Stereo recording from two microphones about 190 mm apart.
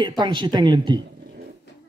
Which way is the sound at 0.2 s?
25° right (ahead or behind).